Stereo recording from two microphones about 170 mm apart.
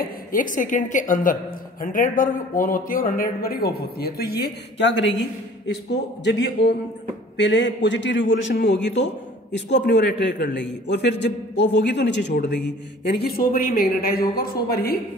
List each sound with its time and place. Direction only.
0.0 s a woman's voice: 55° left (ahead or behind); by 5.1 s 90° left
6.2 s a man's voice: 90° left; by 15.0 s 65° left (ahead or behind)